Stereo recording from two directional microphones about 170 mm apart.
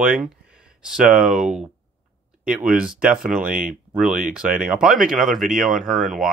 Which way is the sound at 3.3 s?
55° right (ahead or behind).